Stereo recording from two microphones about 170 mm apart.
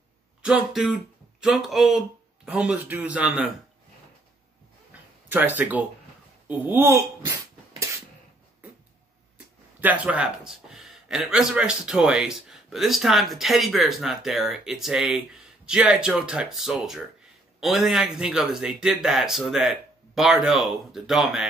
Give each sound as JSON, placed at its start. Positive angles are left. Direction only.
{"t": 0.4, "sound": "speech", "side_deg": -5}
{"t": 5.3, "sound": "speech", "side_deg": -10}
{"t": 9.8, "sound": "speech", "side_deg": -10}